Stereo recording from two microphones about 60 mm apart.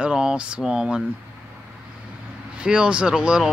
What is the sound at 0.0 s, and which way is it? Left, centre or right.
Speech, centre.